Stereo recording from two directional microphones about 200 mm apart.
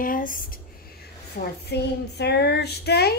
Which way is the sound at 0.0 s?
45° left (ahead or behind).